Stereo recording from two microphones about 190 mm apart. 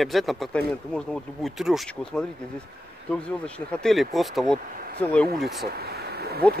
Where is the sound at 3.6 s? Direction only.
5° left (ahead or behind).